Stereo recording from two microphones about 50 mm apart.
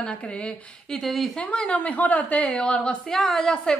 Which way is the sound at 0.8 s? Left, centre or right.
Centre.